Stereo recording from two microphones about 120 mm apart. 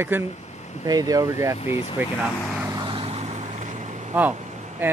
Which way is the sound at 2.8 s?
50° right (ahead or behind).